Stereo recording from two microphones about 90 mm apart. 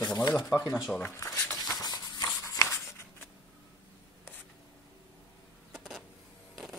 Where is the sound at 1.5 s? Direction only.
45° left (ahead or behind).